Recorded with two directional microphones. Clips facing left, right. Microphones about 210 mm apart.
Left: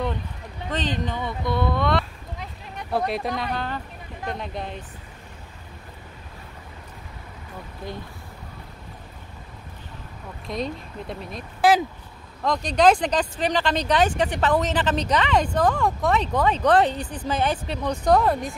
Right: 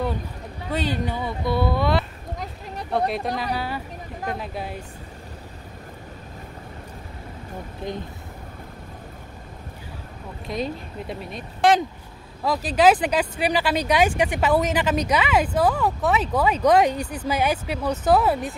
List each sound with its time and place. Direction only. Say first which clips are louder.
0.7 s speech: right 2 dB; 10° right (ahead or behind)
2.3 s a sound: right 4 dB; 40° right (ahead or behind)
3.3 s speech: right 1 dB; 5° right (ahead or behind)
7.8 s speech: right 4 dB; 20° right (ahead or behind)
10.4 s speech: right 1 dB; centre (ahead or behind)